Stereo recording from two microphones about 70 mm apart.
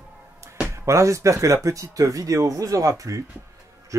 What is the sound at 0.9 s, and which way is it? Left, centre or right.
Speech, right.